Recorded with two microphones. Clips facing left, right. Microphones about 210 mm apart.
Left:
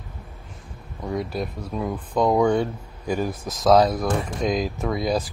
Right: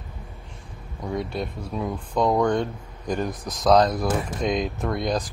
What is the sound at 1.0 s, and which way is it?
Speech, centre (ahead or behind).